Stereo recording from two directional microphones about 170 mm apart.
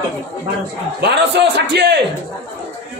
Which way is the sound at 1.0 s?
85° right.